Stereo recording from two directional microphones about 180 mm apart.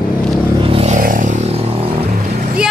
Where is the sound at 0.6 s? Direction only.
30° right (ahead or behind).